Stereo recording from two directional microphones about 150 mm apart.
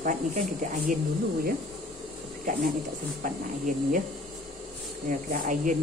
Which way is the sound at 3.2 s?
60° right (ahead or behind).